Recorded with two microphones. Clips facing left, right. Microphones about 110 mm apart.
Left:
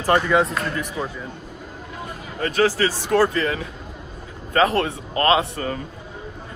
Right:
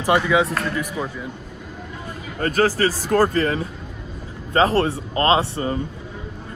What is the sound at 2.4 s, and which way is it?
Speech, 45° right (ahead or behind).